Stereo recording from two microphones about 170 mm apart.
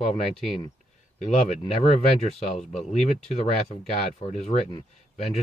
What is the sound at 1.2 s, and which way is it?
Speech, 40° left (ahead or behind).